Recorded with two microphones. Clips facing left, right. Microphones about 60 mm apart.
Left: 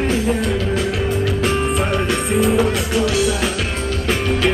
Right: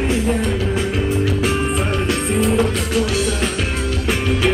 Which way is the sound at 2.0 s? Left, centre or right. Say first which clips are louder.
Left 1 dB; centre.